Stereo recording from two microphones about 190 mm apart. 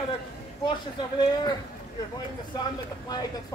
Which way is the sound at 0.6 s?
25° left (ahead or behind).